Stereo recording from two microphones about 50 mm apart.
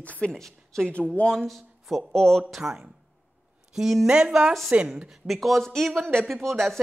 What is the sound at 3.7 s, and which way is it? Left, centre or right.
A woman's voice, centre.